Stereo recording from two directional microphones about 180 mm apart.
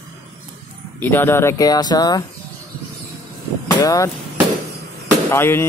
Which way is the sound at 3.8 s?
20° left (ahead or behind).